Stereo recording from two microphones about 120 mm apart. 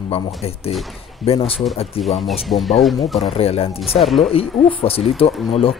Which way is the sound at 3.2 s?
55° left (ahead or behind).